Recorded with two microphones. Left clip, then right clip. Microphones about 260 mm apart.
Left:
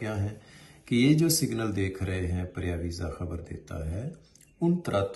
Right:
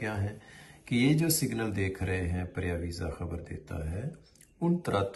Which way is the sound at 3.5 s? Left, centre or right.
Right.